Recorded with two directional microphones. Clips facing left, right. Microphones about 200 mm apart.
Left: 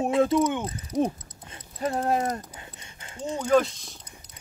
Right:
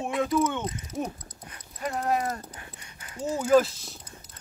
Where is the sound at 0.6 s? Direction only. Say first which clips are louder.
Even; 30° left (ahead or behind).